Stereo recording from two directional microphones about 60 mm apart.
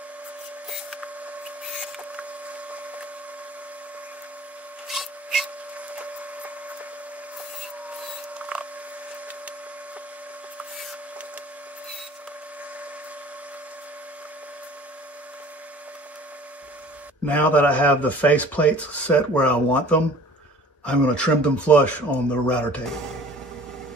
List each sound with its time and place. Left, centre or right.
2.1 s wood: right
4.8 s rub: centre
5.8 s wood: right
8.4 s a sound: centre
17.3 s speech: left